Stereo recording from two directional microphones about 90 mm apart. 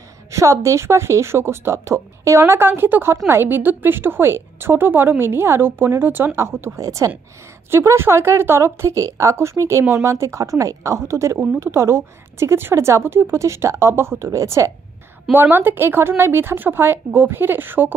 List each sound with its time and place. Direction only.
0.3 s a woman's voice: 35° right (ahead or behind)
15.3 s a woman's voice: 25° right (ahead or behind)